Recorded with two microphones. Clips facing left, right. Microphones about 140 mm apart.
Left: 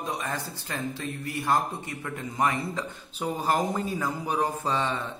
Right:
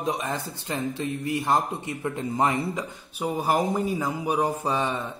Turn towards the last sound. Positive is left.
turn(degrees=-15)  # may be behind; listen again after turning